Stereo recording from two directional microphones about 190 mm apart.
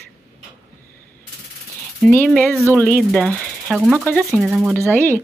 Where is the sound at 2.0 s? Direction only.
Centre (ahead or behind).